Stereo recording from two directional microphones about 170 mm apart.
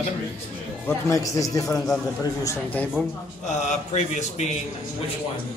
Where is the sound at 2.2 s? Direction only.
20° left (ahead or behind).